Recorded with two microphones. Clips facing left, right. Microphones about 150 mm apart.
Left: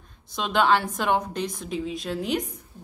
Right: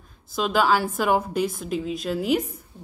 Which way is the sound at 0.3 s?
5° right (ahead or behind).